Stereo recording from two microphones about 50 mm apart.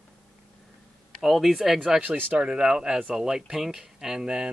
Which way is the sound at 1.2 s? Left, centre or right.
Centre.